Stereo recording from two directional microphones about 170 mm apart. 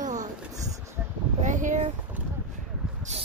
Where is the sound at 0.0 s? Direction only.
45° right (ahead or behind).